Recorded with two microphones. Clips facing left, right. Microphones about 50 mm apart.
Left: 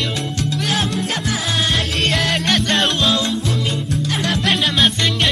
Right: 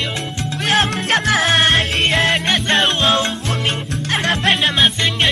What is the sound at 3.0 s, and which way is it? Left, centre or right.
Music, right.